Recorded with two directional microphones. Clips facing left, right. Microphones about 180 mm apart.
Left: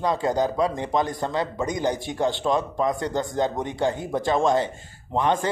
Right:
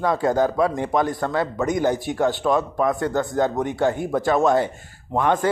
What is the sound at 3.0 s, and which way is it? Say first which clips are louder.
Speech: right 3 dB; 45° right (ahead or behind).